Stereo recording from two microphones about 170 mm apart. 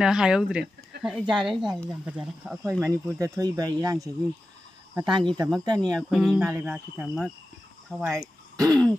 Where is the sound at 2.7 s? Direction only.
15° right (ahead or behind).